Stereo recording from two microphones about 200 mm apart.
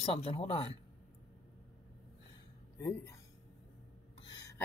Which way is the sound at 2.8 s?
15° left (ahead or behind).